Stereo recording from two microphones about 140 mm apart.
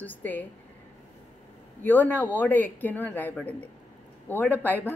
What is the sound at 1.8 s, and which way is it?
A man's voice, 15° left (ahead or behind).